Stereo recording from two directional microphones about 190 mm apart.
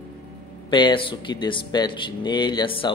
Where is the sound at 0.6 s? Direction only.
25° left (ahead or behind).